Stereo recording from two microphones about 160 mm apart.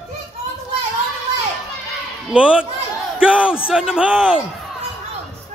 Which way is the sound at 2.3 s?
5° right (ahead or behind).